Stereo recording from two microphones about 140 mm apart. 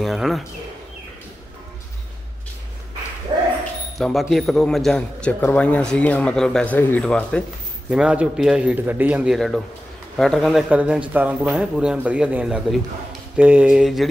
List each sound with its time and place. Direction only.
0.0 s a man's voice: centre (ahead or behind)
3.3 s dog: 35° right (ahead or behind)
4.0 s a man's voice: centre (ahead or behind)
7.9 s a man's voice: 5° right (ahead or behind)